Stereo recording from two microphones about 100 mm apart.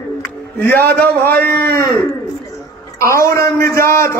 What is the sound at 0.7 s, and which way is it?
Speech, 20° left (ahead or behind).